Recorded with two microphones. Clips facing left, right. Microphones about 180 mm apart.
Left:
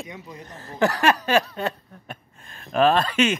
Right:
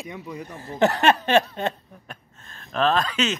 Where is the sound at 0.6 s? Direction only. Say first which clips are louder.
Right 1 dB; 20° right (ahead or behind).